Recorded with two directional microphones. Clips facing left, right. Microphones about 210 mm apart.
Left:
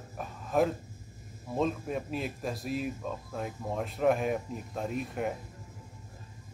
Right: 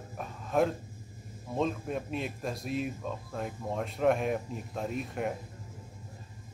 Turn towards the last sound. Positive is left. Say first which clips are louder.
# even
turn(degrees=0)  # may be behind; listen again after turning